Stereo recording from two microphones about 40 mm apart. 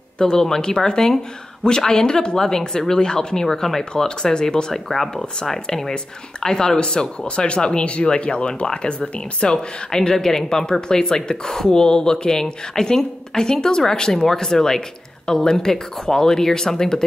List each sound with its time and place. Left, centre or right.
0.2 s a woman's voice: centre
4.8 s a woman's voice: centre